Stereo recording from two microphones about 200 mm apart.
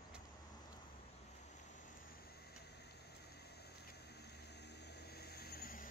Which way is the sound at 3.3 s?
55° left (ahead or behind).